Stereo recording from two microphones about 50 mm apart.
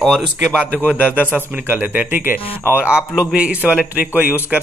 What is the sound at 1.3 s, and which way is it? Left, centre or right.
Speech, right.